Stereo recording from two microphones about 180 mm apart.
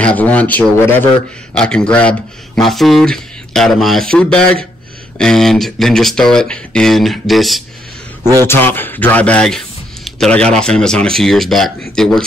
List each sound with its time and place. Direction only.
0.0 s speech: 10° left (ahead or behind)
8.2 s speech: 20° right (ahead or behind)
8.5 s speech: 10° left (ahead or behind)